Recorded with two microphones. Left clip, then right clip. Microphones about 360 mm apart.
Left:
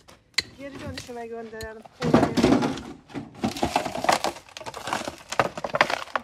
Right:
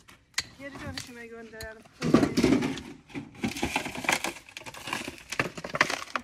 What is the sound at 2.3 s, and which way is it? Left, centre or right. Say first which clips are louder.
Speech: left 4 dB; centre.